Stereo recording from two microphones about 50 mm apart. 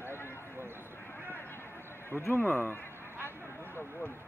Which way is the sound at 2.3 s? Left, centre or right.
Left.